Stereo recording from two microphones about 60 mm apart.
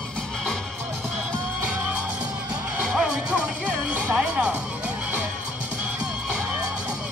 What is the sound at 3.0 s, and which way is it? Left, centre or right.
Music, right.